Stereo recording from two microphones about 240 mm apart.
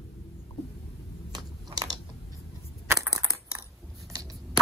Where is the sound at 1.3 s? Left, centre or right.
Centre.